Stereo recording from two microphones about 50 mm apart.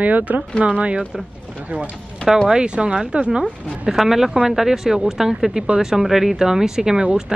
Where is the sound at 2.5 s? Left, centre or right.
Centre.